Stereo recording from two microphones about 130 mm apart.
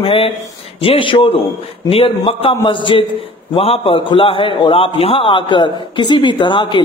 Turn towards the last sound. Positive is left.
turn(degrees=40)  # may be behind; listen again after turning